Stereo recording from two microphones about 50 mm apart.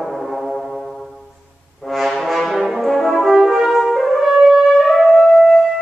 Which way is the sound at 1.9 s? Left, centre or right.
Centre.